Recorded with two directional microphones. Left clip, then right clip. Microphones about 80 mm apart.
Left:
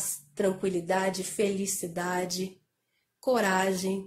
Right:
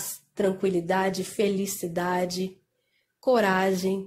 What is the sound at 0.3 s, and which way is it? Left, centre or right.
Speech, right.